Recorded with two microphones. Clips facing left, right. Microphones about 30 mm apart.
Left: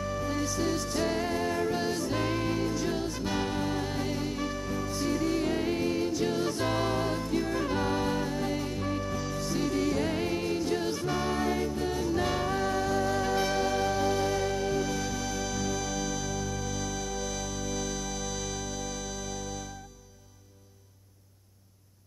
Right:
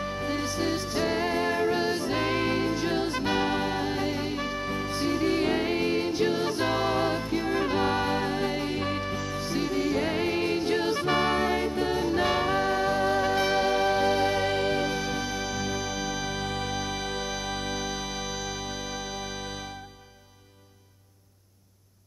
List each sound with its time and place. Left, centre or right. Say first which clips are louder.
0.0 s music: right 1 dB; right
3.0 s music: right 5 dB; right
3.3 s music: right 3 dB; right
9.3 s music: right 1 dB; right
14.9 s music: right 3 dB; right
16.3 s music: right 3 dB; right